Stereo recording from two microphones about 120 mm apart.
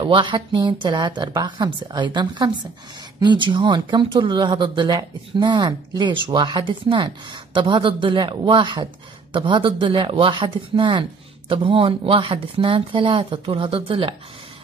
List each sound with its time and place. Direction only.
0.0 s speech: 45° right (ahead or behind)